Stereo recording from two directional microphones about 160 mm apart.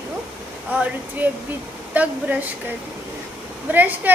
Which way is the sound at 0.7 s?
10° right (ahead or behind).